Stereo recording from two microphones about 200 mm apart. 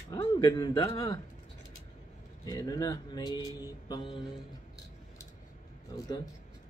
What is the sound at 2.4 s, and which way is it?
Speech, 20° left (ahead or behind).